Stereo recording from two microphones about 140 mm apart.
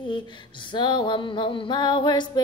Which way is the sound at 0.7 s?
35° left (ahead or behind).